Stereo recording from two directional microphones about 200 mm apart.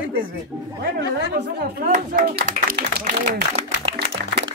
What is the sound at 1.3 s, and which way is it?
Speech, 50° right (ahead or behind).